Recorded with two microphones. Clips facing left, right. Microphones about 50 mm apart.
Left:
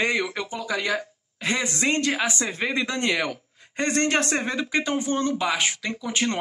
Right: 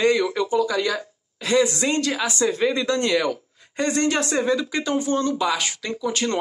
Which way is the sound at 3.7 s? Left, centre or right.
Left.